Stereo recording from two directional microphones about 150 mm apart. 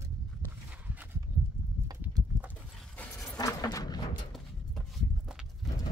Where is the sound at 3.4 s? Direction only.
25° left (ahead or behind).